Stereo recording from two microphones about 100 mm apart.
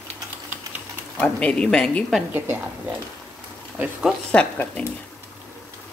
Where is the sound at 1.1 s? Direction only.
10° left (ahead or behind).